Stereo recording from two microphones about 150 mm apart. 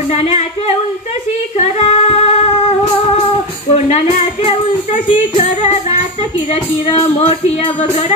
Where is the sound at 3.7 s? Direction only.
45° left (ahead or behind).